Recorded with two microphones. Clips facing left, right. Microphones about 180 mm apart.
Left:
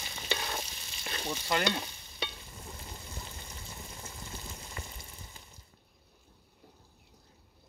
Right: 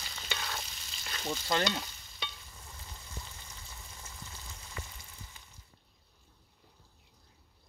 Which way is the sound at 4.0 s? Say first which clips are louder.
Left 5 dB; 25° left (ahead or behind).